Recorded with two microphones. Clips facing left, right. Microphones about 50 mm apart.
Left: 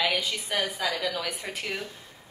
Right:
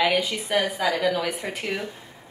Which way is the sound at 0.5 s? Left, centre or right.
Right.